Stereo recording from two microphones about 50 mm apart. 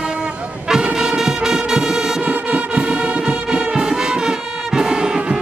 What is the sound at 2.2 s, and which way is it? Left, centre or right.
Music, right.